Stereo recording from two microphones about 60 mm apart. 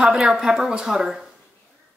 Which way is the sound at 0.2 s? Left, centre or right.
Centre.